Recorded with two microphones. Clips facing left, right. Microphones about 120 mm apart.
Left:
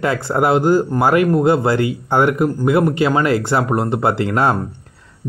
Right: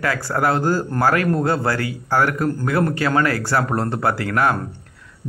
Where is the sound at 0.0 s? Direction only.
20° left (ahead or behind).